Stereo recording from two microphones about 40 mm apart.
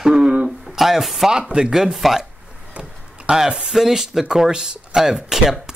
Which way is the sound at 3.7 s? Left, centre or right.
Centre.